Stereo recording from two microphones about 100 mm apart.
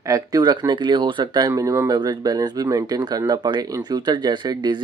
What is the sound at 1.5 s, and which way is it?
Speech, 30° right (ahead or behind).